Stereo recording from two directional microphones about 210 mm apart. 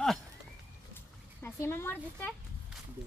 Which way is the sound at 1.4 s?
10° left (ahead or behind).